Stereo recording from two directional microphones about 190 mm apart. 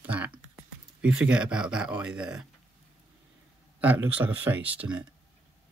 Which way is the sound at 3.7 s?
10° right (ahead or behind).